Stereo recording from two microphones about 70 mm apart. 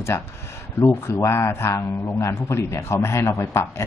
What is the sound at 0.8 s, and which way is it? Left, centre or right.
A man's voice, left.